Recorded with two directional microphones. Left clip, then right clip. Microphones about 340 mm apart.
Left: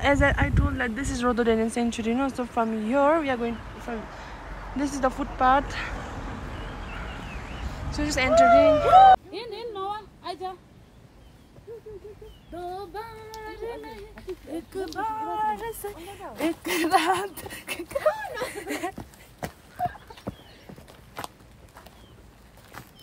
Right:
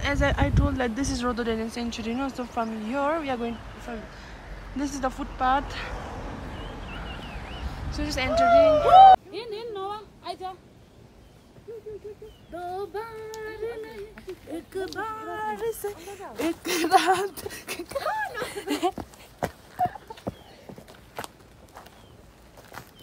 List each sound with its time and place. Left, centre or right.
0.0 s speech: centre
6.0 s a sound: right
7.9 s speech: centre
9.3 s a sound: centre
12.6 s speech: centre
18.7 s speech: centre
19.4 s clip-clop: right